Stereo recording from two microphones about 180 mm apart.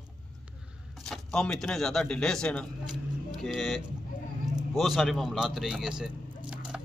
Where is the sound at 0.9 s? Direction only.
Centre (ahead or behind).